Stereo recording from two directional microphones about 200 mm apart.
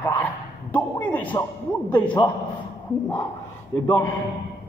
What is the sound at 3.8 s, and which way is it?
Speech, 15° left (ahead or behind).